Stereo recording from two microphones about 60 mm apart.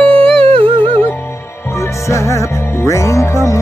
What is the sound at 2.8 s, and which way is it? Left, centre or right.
Music, left.